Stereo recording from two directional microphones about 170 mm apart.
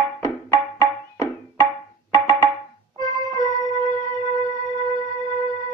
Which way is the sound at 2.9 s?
25° right (ahead or behind).